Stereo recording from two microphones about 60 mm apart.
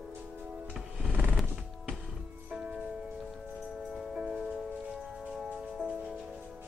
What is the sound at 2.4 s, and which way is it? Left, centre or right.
Music, centre.